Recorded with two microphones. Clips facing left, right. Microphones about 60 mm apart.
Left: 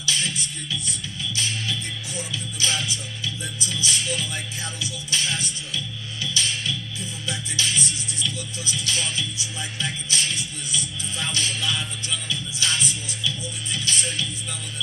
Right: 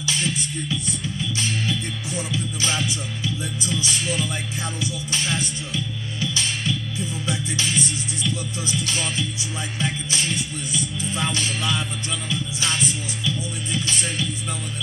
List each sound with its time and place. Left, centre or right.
1.7 s music: right
2.6 s music: right
7.2 s music: right
8.3 s music: right
13.2 s music: right